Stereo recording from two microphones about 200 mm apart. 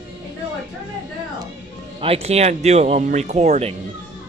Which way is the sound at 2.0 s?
30° right (ahead or behind).